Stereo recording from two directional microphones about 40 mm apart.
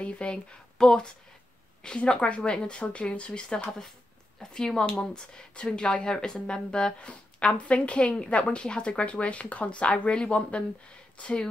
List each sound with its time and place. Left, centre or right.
0.0 s speech: left
0.7 s a woman's voice: centre